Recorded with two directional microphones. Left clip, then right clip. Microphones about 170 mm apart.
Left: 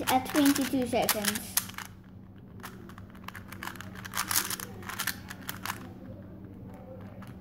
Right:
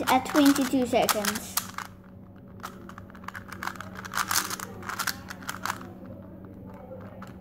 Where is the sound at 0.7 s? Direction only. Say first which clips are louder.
Right 4 dB; 30° right (ahead or behind).